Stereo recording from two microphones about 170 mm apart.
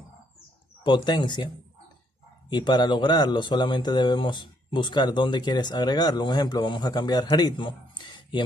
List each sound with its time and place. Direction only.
0.8 s speech: 25° left (ahead or behind)
2.5 s speech: 25° left (ahead or behind)